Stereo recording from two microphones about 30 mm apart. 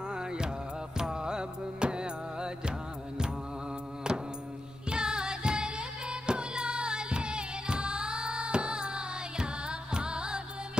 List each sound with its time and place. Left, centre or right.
0.1 s music: right
4.1 s music: right